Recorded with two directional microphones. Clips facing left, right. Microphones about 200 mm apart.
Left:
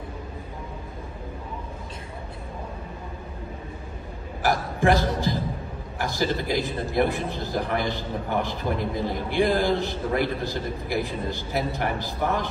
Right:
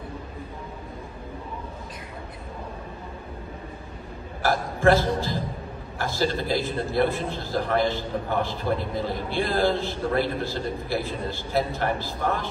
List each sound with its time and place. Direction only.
4.4 s a man's voice: 15° left (ahead or behind)